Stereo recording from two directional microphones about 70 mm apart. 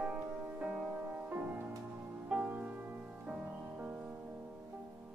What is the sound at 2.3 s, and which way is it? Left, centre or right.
Music, centre.